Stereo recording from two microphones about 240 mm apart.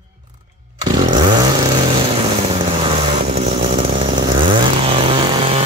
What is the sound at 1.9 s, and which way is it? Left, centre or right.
Vehicle, right.